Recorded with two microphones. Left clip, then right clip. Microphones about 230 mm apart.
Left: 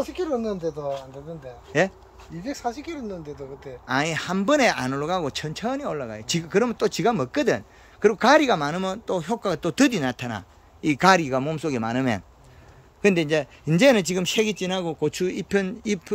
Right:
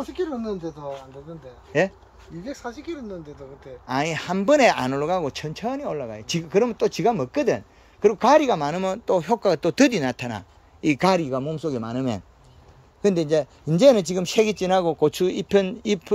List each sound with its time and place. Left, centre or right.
0.0 s speech: left
1.7 s speech: centre
2.4 s speech: left
3.8 s speech: centre